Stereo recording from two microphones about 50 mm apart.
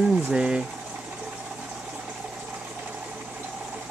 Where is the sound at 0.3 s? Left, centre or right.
Centre.